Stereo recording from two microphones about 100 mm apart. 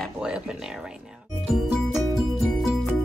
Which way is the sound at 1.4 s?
5° right (ahead or behind).